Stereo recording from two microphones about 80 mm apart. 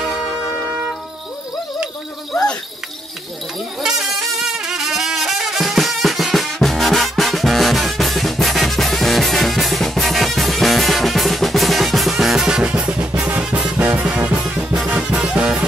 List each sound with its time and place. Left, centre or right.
0.0 s music: centre
3.8 s brass instrument: centre
13.3 s music: centre